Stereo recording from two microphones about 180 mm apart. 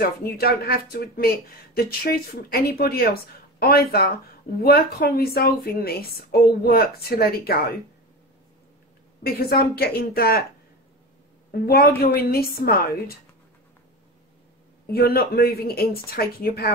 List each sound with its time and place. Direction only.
0.0 s a woman's voice: 60° left (ahead or behind)
9.2 s a woman's voice: 60° left (ahead or behind)
11.5 s a woman's voice: 60° left (ahead or behind)
14.9 s a woman's voice: 60° left (ahead or behind)